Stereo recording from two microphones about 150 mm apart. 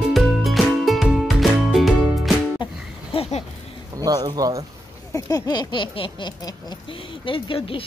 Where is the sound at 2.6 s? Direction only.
40° left (ahead or behind).